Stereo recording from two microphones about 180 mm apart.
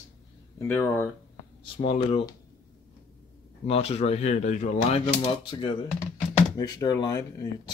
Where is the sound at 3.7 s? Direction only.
35° left (ahead or behind).